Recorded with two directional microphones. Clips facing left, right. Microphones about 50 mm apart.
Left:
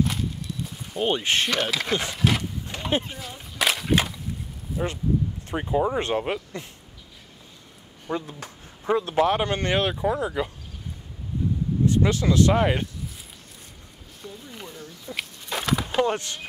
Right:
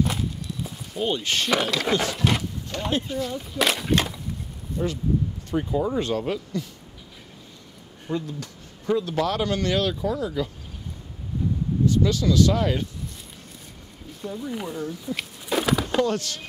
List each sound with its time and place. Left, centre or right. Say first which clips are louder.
0.0 s walk: even; centre
1.0 s speech: left 2 dB; left
1.7 s speech: right 3 dB; centre
2.9 s speech: left 1 dB; left
3.2 s speech: right 4 dB; centre
5.5 s speech: left 1 dB; left
8.1 s speech: right 1 dB; left
11.8 s speech: even; left
14.2 s speech: right 9 dB; centre
15.0 s a sound: right 4 dB; centre
16.0 s speech: even; left